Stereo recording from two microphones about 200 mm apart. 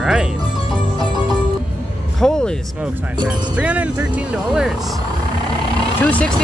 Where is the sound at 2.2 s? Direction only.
5° left (ahead or behind).